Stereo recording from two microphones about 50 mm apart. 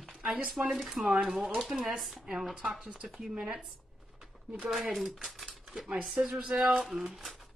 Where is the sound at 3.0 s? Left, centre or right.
Centre.